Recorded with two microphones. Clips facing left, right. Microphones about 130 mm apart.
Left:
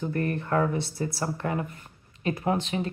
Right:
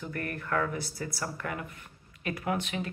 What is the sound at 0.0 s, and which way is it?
A woman's voice, 25° left (ahead or behind).